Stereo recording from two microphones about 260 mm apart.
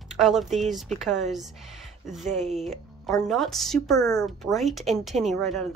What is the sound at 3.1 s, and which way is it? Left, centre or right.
Speech, centre.